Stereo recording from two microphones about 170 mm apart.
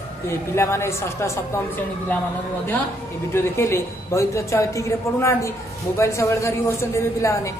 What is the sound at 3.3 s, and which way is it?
A woman's voice, 15° left (ahead or behind).